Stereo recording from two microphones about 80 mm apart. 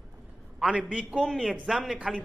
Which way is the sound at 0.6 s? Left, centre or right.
Centre.